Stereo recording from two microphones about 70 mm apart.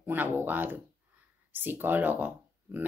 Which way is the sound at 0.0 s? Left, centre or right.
Right.